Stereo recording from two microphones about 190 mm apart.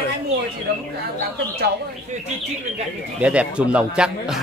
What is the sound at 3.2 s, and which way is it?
Speech, 5° right (ahead or behind).